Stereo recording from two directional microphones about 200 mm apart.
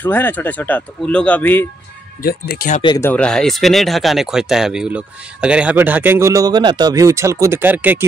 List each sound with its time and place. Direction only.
0.0 s speech: 10° left (ahead or behind)
2.2 s speech: 50° left (ahead or behind)
2.8 s speech: 20° left (ahead or behind)
3.1 s speech: 5° left (ahead or behind)